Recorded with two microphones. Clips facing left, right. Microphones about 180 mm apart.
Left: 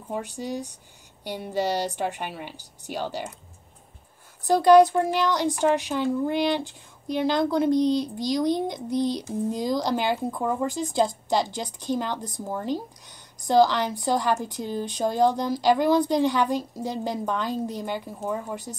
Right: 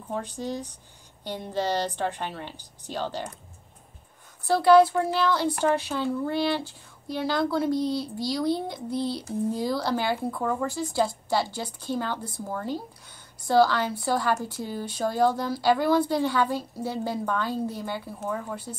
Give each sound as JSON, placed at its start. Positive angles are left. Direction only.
{"t": 0.1, "sound": "a woman's voice", "side_deg": 10}
{"t": 4.5, "sound": "a woman's voice", "side_deg": 15}